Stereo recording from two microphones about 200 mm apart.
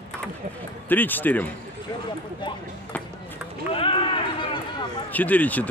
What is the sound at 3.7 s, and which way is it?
Run, 25° left (ahead or behind).